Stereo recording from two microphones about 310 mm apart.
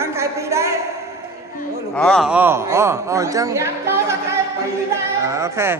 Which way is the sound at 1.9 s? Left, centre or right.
Centre.